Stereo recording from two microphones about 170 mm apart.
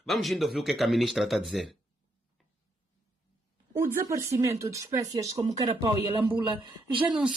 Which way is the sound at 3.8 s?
15° right (ahead or behind).